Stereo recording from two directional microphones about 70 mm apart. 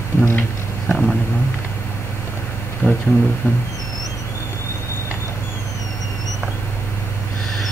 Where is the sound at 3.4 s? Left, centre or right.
Left.